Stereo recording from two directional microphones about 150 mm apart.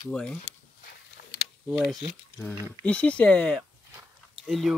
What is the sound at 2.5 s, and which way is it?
Speech, 10° left (ahead or behind).